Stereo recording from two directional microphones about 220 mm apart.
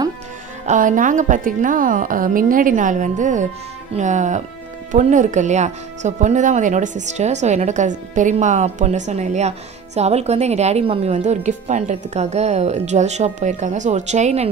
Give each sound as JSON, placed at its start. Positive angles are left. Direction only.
{"t": 0.7, "sound": "a woman's voice", "side_deg": -35}